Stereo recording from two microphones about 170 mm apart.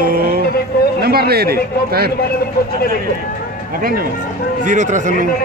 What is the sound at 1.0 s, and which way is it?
A man's voice, 65° right (ahead or behind).